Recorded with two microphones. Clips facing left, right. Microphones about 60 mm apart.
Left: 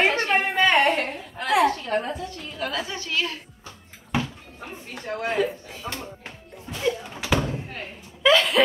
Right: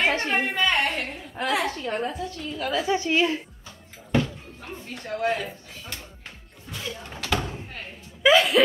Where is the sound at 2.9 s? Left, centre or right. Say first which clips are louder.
Right 6 dB; right.